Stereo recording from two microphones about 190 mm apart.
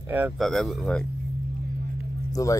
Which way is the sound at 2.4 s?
20° left (ahead or behind).